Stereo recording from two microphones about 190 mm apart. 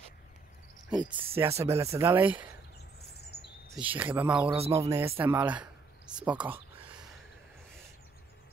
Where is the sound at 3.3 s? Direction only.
60° left (ahead or behind).